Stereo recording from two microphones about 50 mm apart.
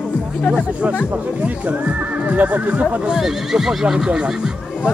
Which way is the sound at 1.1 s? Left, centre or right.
Right.